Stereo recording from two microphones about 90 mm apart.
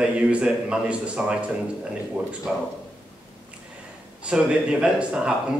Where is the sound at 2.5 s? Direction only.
10° right (ahead or behind).